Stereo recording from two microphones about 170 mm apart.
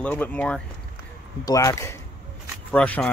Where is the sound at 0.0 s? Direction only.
10° left (ahead or behind).